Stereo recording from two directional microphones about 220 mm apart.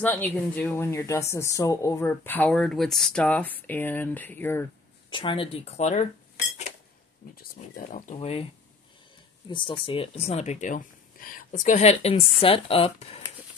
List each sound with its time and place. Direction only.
0.0 s speech: 10° left (ahead or behind)
5.1 s speech: 20° left (ahead or behind)
7.7 s speech: 35° left (ahead or behind)
9.5 s speech: 20° left (ahead or behind)